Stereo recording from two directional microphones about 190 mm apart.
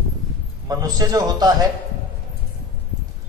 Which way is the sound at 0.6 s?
20° right (ahead or behind).